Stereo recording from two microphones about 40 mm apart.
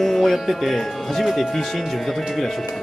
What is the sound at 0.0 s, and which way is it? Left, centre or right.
Speech, centre.